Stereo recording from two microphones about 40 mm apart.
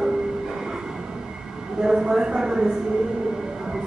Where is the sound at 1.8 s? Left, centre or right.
Centre.